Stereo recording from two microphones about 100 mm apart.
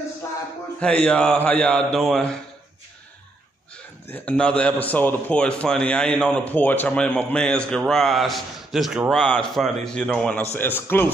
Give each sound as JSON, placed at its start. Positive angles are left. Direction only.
{"t": 0.7, "sound": "a man's voice", "side_deg": 10}
{"t": 4.1, "sound": "a man's voice", "side_deg": 15}
{"t": 10.5, "sound": "a man's voice", "side_deg": 20}